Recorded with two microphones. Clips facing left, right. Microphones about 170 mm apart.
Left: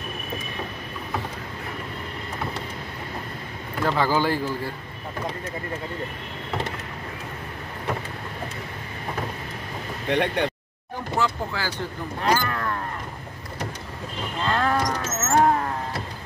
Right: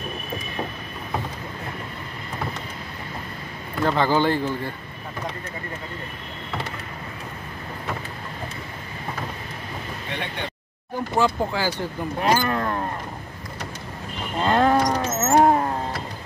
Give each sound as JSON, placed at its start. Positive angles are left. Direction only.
{"t": 3.8, "sound": "a man's voice", "side_deg": 5}
{"t": 10.1, "sound": "speech", "side_deg": 80}
{"t": 11.1, "sound": "speech", "side_deg": -15}
{"t": 14.4, "sound": "a sound", "side_deg": -25}